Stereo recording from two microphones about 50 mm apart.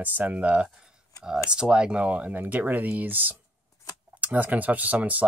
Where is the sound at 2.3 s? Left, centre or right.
Right.